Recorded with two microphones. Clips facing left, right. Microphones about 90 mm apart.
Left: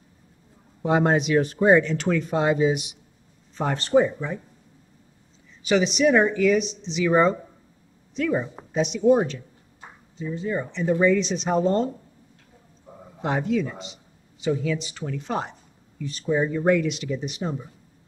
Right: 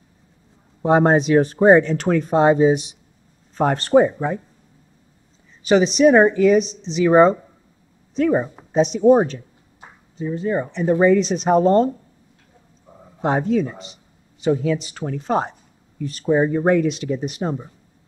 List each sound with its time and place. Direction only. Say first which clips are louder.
0.8 s speech: right 5 dB; 35° right (ahead or behind)
3.5 s speech: right 5 dB; 50° right (ahead or behind)
5.7 s speech: right 6 dB; 40° right (ahead or behind)
13.2 s speech: right 5 dB; 35° right (ahead or behind)